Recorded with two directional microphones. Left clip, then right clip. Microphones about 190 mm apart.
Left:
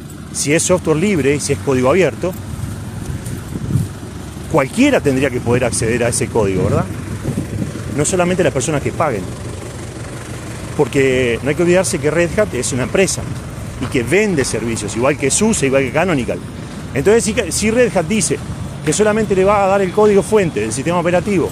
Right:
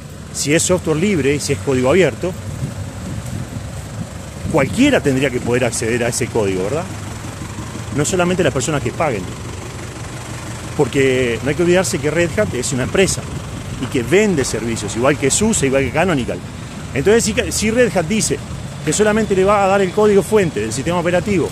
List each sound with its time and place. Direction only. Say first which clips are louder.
0.4 s speech: left 1 dB; 10° right (ahead or behind)
4.6 s speech: left 1 dB; 5° right (ahead or behind)
8.0 s speech: left 1 dB; 10° right (ahead or behind)
10.8 s speech: left 1 dB; 5° right (ahead or behind)